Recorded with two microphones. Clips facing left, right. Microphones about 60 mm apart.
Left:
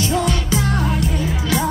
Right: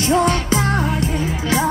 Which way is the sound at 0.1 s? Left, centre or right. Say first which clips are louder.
Right 3 dB; right.